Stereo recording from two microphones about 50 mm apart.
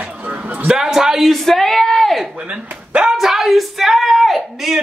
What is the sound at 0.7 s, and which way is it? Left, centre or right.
Speech, centre.